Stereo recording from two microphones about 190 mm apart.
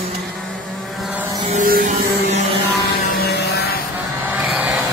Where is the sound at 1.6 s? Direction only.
50° right (ahead or behind).